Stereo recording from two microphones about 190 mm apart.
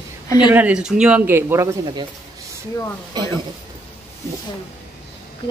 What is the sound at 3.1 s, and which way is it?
Speech, 20° right (ahead or behind).